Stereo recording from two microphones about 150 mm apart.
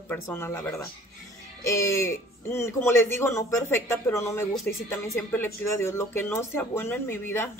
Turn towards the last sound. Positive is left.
turn(degrees=15)  # may be behind; listen again after turning